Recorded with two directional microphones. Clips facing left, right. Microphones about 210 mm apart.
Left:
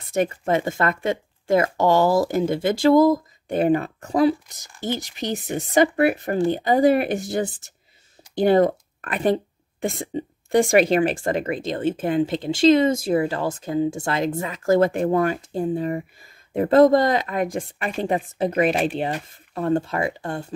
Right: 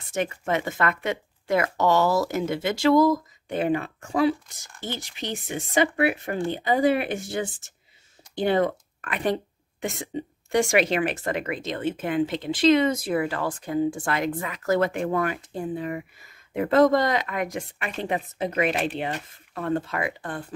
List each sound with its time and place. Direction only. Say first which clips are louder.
0.1 s speech: left 5 dB; 35° left (ahead or behind)
3.0 s speech: left 3 dB; 50° left (ahead or behind); by 20.4 s 25° left (ahead or behind)